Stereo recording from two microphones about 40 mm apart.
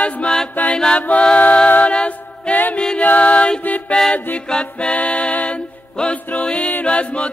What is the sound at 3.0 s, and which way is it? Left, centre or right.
Music, left.